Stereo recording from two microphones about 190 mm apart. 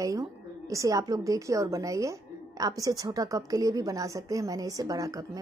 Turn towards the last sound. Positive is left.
turn(degrees=-20)  # may be behind; listen again after turning